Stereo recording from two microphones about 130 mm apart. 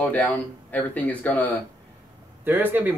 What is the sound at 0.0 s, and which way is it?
Speech, 10° left (ahead or behind).